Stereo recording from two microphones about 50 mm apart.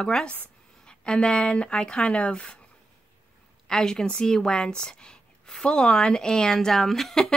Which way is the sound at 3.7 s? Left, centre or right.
Centre.